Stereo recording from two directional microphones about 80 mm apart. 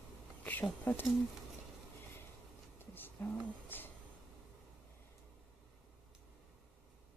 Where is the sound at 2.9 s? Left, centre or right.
Left.